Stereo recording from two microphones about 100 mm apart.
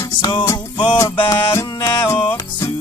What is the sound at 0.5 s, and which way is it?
Music, 45° left (ahead or behind).